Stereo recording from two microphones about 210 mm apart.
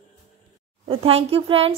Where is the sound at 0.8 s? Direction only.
25° right (ahead or behind).